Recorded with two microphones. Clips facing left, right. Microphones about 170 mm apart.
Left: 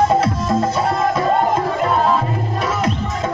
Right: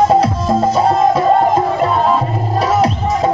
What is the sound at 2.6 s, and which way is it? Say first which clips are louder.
Music: right 8 dB; 35° right (ahead or behind).